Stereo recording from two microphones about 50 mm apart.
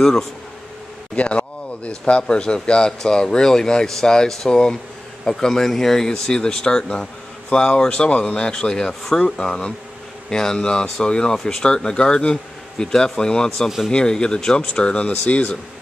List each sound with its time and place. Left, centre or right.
0.0 s speech: centre
1.1 s speech: left